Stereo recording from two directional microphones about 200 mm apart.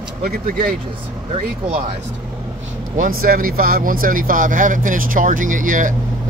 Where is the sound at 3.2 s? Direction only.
45° right (ahead or behind).